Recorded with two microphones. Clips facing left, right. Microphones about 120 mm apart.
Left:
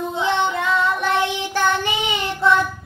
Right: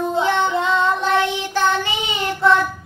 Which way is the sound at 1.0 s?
15° left (ahead or behind).